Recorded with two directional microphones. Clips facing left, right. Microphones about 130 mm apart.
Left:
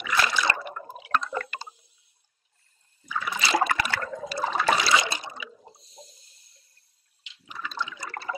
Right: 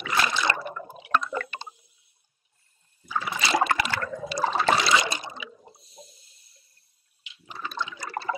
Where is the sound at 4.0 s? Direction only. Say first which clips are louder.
Right 1 dB; 25° left (ahead or behind).